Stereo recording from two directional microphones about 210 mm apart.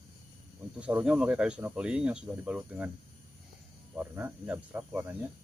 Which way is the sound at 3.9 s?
10° right (ahead or behind).